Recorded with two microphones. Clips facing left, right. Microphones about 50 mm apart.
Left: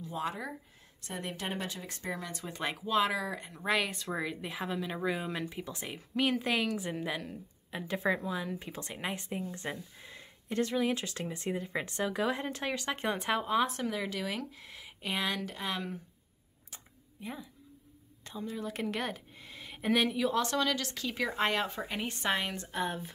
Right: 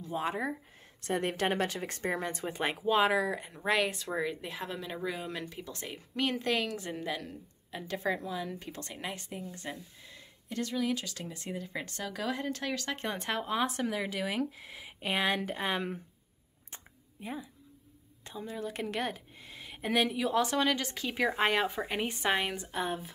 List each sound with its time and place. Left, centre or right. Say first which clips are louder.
0.1 s speech: right 4 dB; right
1.0 s speech: right 8 dB; right
2.5 s speech: right 2 dB; right; by 5.9 s centre
5.9 s a woman's voice: left 2 dB; centre; by 16.0 s right
17.2 s speech: right 2 dB; centre
20.5 s a woman's voice: right 2 dB; right; by 23.1 s centre